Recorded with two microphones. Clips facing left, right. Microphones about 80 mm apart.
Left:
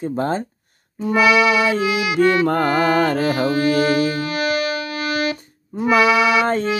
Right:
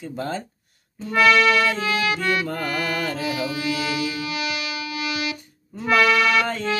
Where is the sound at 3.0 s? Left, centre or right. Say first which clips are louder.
Left 8 dB; left.